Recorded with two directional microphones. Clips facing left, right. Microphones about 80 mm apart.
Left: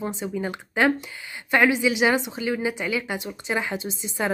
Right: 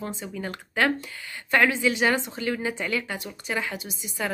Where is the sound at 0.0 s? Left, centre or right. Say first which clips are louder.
Left 5 dB; centre.